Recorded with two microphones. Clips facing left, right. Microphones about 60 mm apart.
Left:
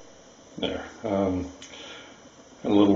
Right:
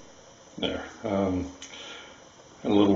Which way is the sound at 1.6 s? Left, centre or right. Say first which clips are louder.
Even; centre.